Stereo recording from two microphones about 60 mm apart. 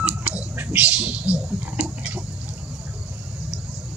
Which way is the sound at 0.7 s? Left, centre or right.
Right.